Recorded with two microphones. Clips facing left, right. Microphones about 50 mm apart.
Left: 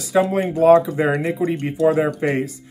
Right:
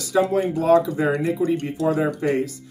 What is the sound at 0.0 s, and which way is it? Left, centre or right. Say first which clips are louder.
Speech: left 2 dB; left.